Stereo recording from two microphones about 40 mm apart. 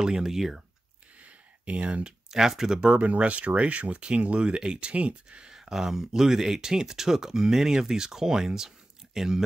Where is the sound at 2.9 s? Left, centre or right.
Right.